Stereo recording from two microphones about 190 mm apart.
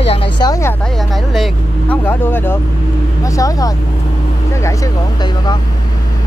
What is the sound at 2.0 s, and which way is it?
Speech, 10° left (ahead or behind).